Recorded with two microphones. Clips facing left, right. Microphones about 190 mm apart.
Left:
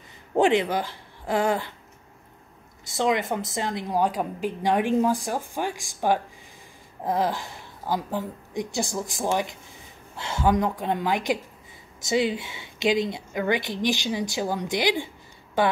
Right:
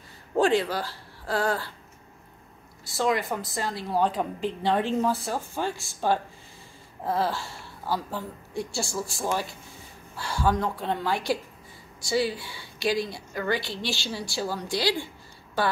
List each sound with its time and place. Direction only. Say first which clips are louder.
0.4 s a woman's voice: left 2 dB; 20° left (ahead or behind)
2.8 s a woman's voice: left 2 dB; 20° left (ahead or behind)